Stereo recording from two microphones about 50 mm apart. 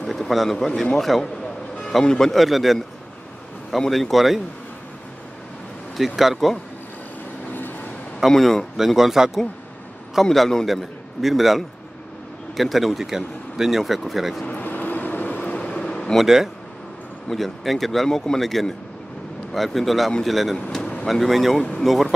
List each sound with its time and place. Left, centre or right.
0.0 s speech: centre
3.9 s speech: centre
5.9 s speech: centre
7.5 s vehicle: left
8.3 s speech: centre
8.7 s speech: centre
10.3 s speech: centre
14.6 s vehicle: left
15.4 s vehicle: centre
16.2 s speech: centre